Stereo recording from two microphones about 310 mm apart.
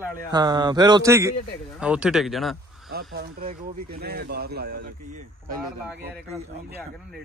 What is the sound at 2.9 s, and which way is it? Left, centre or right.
Speech, right.